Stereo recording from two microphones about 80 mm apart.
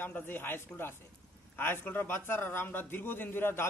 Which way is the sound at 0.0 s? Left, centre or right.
Left.